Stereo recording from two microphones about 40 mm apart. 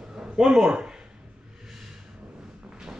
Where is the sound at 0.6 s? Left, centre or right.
Centre.